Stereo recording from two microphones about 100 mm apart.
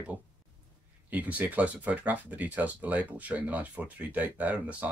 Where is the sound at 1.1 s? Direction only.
15° right (ahead or behind).